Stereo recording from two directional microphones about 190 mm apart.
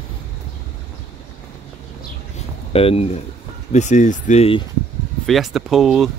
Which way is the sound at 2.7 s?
30° left (ahead or behind).